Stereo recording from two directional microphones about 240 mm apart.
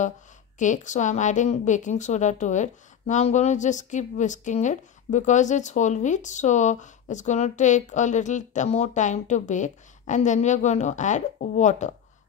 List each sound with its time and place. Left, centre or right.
0.6 s a woman's voice: left